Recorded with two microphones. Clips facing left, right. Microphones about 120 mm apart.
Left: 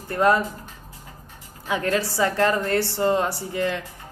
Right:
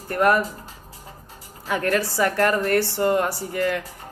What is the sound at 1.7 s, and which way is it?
Speech, 20° left (ahead or behind).